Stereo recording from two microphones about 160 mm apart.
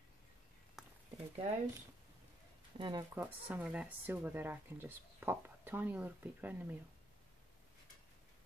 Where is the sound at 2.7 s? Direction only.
30° right (ahead or behind).